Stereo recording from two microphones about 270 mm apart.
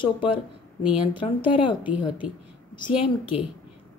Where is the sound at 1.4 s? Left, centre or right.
Centre.